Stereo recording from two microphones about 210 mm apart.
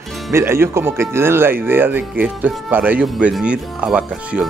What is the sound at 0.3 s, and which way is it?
Speech, 10° right (ahead or behind).